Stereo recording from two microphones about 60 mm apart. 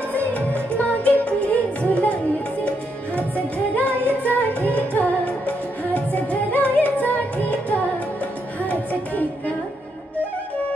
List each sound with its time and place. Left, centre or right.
0.1 s music: left
3.2 s music: left